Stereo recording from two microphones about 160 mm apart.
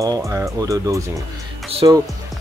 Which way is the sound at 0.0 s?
20° right (ahead or behind).